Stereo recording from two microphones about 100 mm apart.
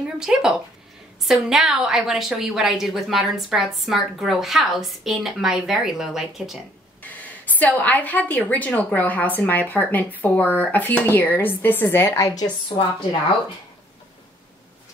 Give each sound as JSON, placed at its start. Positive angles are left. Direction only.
{"t": 0.2, "sound": "a woman's voice", "side_deg": -5}
{"t": 7.0, "sound": "a woman's voice", "side_deg": 15}